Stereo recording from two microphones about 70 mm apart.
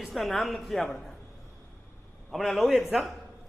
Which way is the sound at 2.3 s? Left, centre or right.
Centre.